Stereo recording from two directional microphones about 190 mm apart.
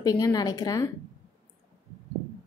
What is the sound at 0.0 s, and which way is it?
Speech, 20° left (ahead or behind).